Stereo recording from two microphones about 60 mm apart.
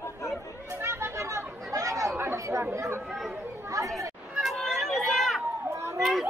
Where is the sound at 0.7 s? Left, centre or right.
Right.